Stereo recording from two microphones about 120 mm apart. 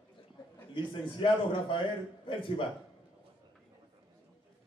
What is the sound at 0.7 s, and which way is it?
A man's voice, 45° left (ahead or behind).